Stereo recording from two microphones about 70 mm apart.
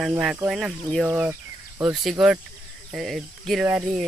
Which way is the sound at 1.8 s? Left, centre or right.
Centre.